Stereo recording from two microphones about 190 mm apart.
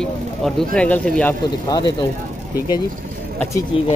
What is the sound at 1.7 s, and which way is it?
Speech, 25° left (ahead or behind).